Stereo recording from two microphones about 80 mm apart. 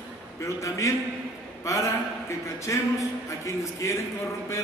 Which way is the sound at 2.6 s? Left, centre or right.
Left.